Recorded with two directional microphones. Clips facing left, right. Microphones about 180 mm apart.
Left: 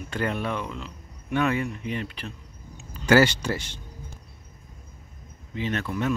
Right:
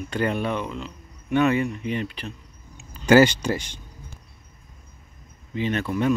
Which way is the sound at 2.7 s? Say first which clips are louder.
Right 3 dB; 20° right (ahead or behind).